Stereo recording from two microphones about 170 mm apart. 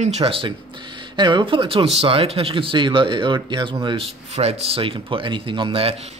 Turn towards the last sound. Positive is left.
turn(degrees=-35)  # may be behind; listen again after turning